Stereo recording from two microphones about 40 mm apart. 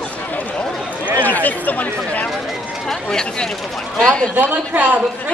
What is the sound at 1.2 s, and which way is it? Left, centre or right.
Speech, left.